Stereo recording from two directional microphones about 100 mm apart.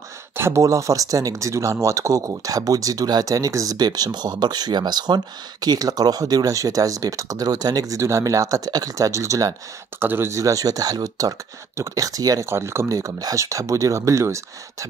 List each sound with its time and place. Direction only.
0.4 s speech: 30° right (ahead or behind)